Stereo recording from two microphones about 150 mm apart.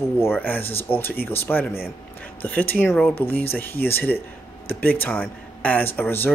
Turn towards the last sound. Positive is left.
turn(degrees=15)  # may be behind; listen again after turning